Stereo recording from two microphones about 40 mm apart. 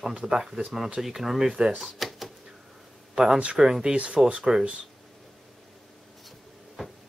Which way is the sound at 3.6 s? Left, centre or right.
Centre.